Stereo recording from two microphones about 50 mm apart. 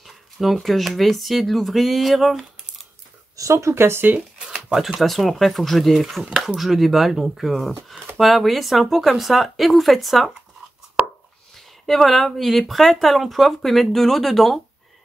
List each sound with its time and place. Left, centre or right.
0.0 s speech: centre
3.4 s speech: right
4.4 s a sound: centre
4.7 s speech: centre
11.8 s speech: centre